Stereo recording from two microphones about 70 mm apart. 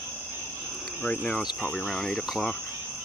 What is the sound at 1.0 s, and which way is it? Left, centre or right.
Speech, centre.